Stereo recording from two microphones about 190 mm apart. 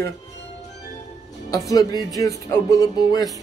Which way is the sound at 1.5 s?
20° left (ahead or behind).